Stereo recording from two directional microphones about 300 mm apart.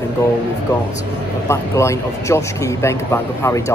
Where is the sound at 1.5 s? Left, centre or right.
Centre.